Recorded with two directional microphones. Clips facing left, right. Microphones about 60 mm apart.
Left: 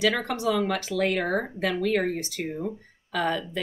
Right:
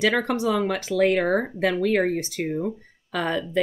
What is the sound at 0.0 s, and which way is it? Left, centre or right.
Speech, right.